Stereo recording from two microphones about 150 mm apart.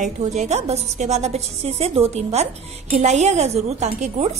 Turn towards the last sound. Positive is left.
turn(degrees=-45)  # may be behind; listen again after turning